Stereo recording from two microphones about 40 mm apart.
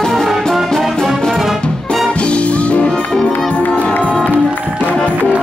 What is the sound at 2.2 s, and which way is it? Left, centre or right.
Music, left.